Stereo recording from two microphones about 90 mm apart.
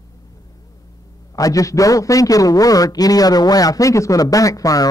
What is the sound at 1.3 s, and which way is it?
A man's voice, 40° left (ahead or behind).